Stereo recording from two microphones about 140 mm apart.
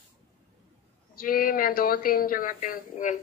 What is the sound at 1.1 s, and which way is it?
Speech, 90° left.